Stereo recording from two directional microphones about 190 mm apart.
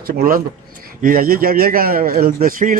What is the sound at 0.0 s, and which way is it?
A man's voice, 50° right (ahead or behind).